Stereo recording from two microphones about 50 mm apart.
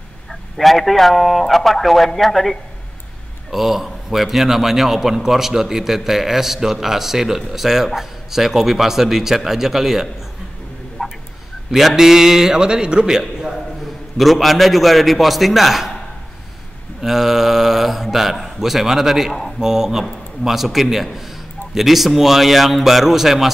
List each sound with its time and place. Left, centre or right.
0.3 s a man's voice: centre
11.0 s tick-tock: centre
11.7 s a man's voice: centre
14.1 s a man's voice: centre
17.0 s a man's voice: centre